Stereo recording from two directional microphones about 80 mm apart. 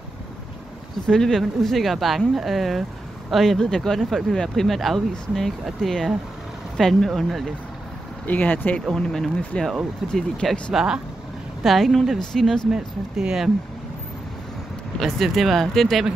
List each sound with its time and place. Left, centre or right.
1.0 s speech: centre
8.3 s speech: left
8.8 s speech: centre
9.4 s speech: centre
10.7 s speech: centre
12.7 s speech: centre
15.0 s speech: centre